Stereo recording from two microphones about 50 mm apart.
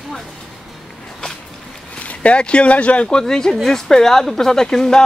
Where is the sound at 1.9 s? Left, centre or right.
Left.